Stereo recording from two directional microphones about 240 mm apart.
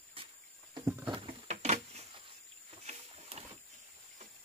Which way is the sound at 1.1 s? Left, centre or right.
Right.